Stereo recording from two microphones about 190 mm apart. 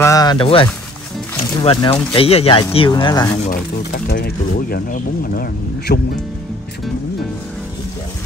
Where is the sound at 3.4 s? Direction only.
55° left (ahead or behind).